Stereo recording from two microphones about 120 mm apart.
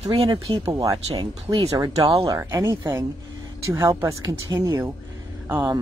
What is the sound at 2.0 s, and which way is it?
Speech, 50° right (ahead or behind).